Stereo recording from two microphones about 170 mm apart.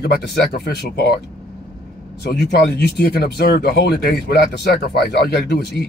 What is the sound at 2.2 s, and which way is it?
Speech, 70° left (ahead or behind).